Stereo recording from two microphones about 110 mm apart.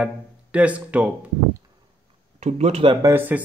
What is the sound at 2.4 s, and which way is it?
Speech, 75° right (ahead or behind).